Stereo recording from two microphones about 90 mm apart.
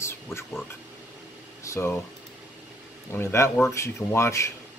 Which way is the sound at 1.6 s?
30° left (ahead or behind).